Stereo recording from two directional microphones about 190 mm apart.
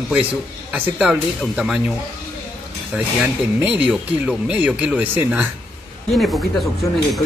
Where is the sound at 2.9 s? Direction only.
5° right (ahead or behind).